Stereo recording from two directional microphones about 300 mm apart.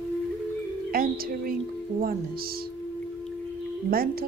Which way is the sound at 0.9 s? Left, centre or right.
Right.